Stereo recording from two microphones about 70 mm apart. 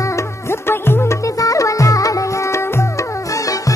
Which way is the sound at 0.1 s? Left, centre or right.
Left.